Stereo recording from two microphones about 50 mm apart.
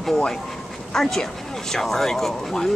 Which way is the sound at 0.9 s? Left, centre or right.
Centre.